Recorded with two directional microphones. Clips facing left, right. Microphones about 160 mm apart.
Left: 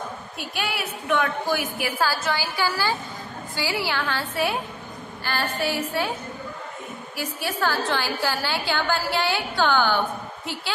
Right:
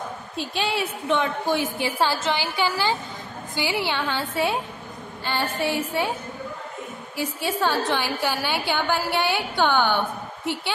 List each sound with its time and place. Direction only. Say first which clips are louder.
0.4 s a woman's voice: right 4 dB; 25° right (ahead or behind)
7.2 s a woman's voice: right 2 dB; 20° right (ahead or behind)